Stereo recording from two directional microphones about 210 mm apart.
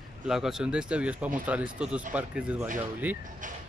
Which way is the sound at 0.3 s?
Centre (ahead or behind).